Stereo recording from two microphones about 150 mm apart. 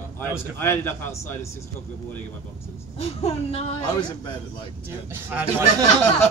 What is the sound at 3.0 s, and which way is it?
Speech, 45° left (ahead or behind).